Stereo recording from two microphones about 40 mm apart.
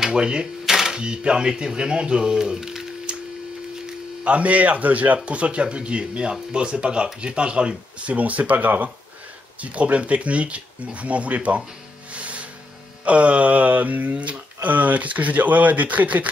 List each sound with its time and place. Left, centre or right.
0.0 s speech: right
0.7 s camera: centre
1.0 s speech: right
4.2 s speech: right
12.1 s music: right
13.0 s speech: right